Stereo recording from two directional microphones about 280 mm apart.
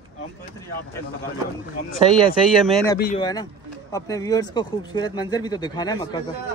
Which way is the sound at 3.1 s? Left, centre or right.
Centre.